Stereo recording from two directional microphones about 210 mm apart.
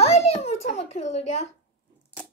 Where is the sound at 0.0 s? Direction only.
30° left (ahead or behind).